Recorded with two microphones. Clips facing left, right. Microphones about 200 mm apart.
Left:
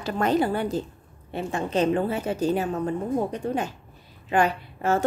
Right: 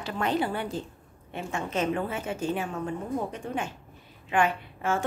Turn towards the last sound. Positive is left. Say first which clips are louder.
# left 5 dB
turn(degrees=40)  # may be behind; listen again after turning